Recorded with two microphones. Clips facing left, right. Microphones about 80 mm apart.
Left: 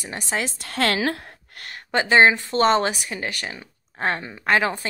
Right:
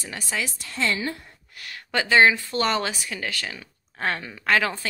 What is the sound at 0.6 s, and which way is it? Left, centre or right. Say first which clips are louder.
Speech: left 5 dB; left.